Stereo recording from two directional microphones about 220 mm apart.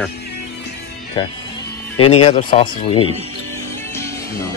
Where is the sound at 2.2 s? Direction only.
30° left (ahead or behind).